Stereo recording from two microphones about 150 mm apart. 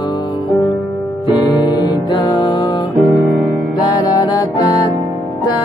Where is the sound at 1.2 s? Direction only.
30° left (ahead or behind).